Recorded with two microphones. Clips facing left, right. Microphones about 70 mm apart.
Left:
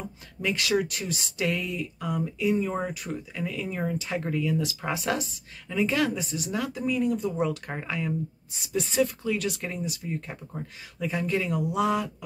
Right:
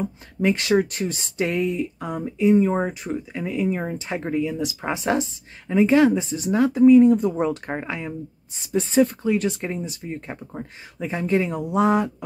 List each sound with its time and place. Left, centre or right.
0.4 s speech: right